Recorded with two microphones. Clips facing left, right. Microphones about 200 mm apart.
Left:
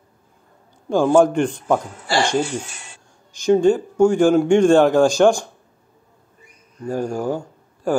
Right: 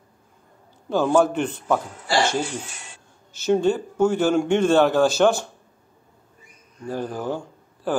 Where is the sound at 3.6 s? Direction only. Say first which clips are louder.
Left 6 dB; 10° left (ahead or behind).